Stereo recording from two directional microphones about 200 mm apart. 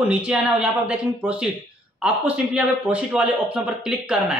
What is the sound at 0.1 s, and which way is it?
A man's voice, 5° right (ahead or behind).